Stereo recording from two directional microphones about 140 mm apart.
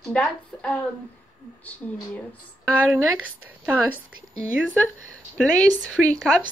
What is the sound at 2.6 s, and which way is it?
Speech, 10° right (ahead or behind).